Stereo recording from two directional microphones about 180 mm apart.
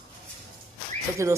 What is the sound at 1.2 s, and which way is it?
Speech, 15° right (ahead or behind).